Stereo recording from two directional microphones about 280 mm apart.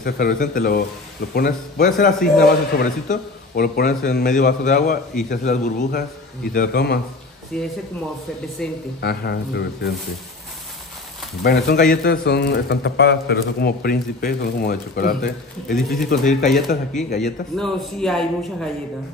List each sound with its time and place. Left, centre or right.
0.0 s a man's voice: left
7.5 s a man's voice: centre
9.0 s a man's voice: left
11.4 s a man's voice: left
15.7 s a man's voice: centre
16.1 s a man's voice: left
17.6 s a man's voice: centre